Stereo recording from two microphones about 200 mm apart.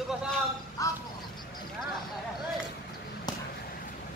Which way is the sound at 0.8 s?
15° left (ahead or behind).